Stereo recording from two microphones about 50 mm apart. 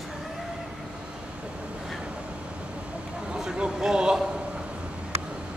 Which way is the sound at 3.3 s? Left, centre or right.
Centre.